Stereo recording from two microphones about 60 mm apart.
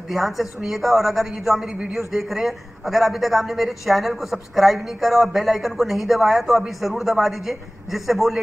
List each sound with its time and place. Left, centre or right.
0.1 s a man's voice: centre
1.7 s speech: centre
2.0 s a man's voice: centre